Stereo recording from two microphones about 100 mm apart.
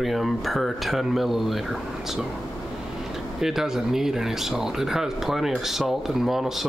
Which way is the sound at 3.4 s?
5° right (ahead or behind).